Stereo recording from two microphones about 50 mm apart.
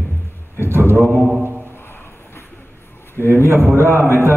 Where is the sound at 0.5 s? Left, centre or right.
Right.